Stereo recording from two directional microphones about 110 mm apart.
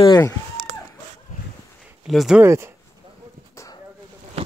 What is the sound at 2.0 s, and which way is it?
Speech, centre (ahead or behind).